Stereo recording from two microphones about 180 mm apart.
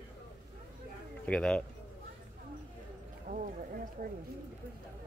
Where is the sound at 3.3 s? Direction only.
45° right (ahead or behind).